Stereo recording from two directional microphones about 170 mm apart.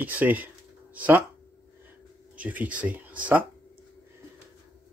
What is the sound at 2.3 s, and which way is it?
Speech, 10° right (ahead or behind).